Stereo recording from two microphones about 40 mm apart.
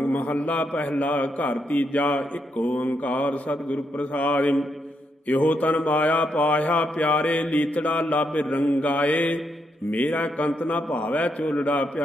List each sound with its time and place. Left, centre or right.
0.1 s a man's voice: left